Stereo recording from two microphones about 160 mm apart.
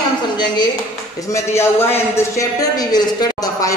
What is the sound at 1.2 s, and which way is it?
A man's voice, 20° left (ahead or behind).